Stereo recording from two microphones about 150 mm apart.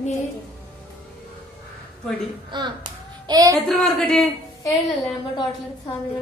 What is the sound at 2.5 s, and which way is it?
A child's voice, 30° right (ahead or behind).